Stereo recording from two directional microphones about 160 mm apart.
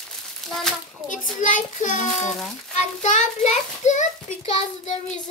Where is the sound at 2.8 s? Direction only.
50° left (ahead or behind).